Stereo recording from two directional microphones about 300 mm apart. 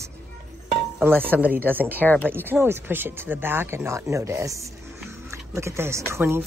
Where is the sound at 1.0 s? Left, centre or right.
Centre.